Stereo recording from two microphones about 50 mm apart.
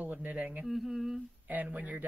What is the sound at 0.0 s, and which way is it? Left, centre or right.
Speech, right.